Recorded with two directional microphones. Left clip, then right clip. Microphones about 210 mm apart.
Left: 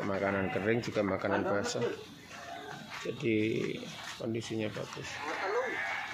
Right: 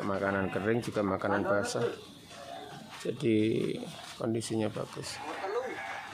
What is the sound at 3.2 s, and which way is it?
Speech, 25° right (ahead or behind).